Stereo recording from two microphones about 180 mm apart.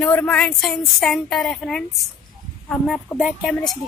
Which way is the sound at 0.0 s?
10° left (ahead or behind).